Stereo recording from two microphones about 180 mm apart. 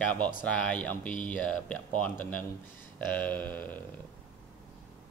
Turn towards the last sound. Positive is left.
turn(degrees=10)  # may be behind; listen again after turning